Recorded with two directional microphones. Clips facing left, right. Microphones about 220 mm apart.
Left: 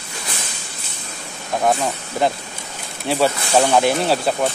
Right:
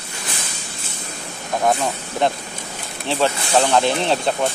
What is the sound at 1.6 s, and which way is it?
Speech, 5° left (ahead or behind).